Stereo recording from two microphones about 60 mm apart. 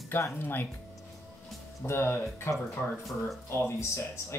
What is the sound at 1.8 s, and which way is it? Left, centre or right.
Speech, left.